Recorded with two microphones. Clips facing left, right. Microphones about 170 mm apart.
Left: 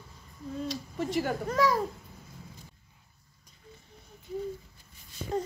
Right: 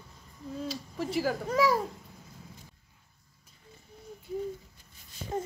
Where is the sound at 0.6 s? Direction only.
Centre (ahead or behind).